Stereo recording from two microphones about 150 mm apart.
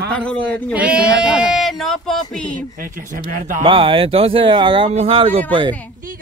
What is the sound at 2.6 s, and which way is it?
Speech, 65° right (ahead or behind).